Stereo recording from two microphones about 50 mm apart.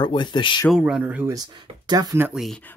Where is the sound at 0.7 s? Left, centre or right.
Centre.